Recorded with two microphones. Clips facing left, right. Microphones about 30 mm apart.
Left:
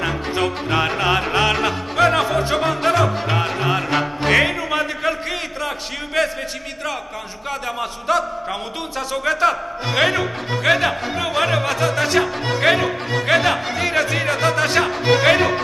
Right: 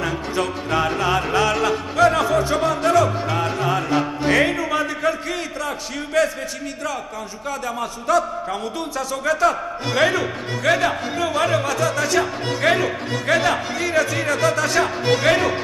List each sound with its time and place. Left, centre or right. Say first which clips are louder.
0.0 s music: left 2 dB; left
1.2 s speech: left 1 dB; left
7.4 s speech: left 1 dB; left